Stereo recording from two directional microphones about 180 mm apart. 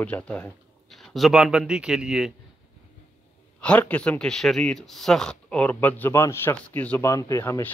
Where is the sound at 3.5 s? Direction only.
5° left (ahead or behind).